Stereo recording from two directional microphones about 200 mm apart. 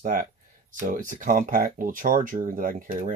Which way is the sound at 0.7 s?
40° right (ahead or behind).